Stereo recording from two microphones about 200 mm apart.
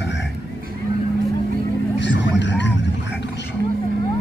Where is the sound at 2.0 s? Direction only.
60° left (ahead or behind).